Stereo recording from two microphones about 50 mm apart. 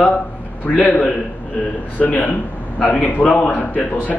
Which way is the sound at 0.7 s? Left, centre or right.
Left.